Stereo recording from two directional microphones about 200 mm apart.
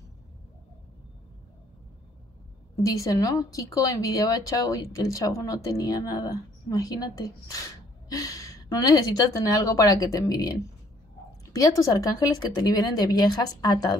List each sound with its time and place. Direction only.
2.8 s speech: 15° left (ahead or behind)